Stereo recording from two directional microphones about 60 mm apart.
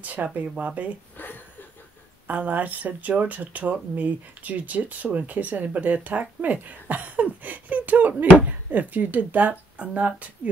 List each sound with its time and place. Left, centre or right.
0.0 s speech: right
2.2 s speech: right